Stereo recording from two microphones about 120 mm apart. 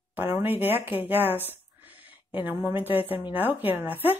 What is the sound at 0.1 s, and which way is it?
A woman's voice, 15° right (ahead or behind).